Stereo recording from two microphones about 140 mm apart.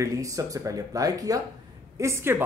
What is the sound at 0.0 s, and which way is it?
Speech, 25° right (ahead or behind).